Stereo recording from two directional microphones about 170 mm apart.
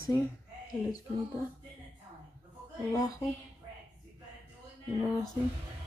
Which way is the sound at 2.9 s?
20° left (ahead or behind).